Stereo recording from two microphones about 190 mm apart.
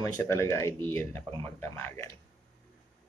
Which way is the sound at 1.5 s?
10° left (ahead or behind).